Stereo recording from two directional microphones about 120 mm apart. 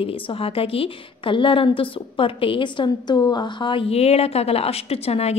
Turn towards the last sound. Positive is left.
turn(degrees=60)  # may be behind; listen again after turning